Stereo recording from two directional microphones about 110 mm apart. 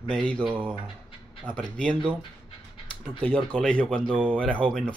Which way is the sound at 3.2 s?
15° left (ahead or behind).